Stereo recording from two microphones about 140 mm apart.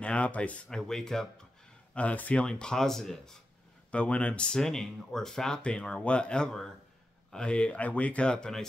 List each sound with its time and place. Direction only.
0.0 s speech: 10° left (ahead or behind)